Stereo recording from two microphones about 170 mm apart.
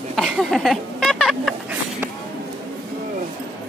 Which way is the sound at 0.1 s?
Centre (ahead or behind).